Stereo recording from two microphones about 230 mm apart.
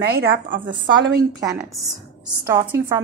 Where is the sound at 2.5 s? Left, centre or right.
Centre.